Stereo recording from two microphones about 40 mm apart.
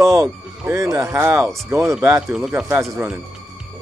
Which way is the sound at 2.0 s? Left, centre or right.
Right.